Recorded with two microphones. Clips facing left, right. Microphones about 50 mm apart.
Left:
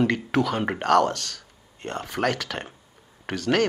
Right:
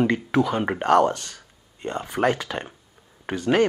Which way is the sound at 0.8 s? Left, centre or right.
Centre.